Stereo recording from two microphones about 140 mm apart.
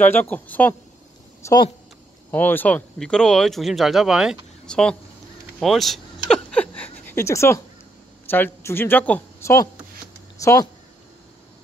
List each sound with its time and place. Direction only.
0.0 s speech: 15° left (ahead or behind)
1.4 s speech: 30° left (ahead or behind)
2.3 s speech: 15° left (ahead or behind)
5.6 s a sound: centre (ahead or behind); by 7.6 s 20° left (ahead or behind)
8.3 s speech: 15° left (ahead or behind)
10.4 s speech: 20° left (ahead or behind)